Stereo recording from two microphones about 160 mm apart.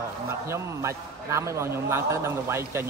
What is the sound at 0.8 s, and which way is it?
Speech, 15° right (ahead or behind).